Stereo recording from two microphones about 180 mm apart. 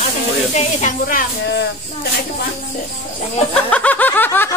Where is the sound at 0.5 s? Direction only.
45° left (ahead or behind).